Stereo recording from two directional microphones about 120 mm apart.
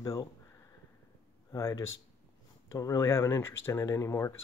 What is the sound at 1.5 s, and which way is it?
Speech, 25° left (ahead or behind).